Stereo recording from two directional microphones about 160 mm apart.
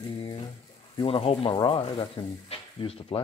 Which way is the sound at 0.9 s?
35° left (ahead or behind).